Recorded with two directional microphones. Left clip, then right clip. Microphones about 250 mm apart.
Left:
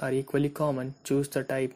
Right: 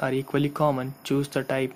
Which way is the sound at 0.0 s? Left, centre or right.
Centre.